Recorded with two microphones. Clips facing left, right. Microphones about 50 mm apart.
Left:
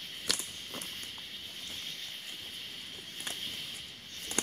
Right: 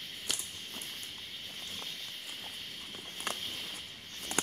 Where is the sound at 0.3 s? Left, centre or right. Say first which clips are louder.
Left 3 dB; left.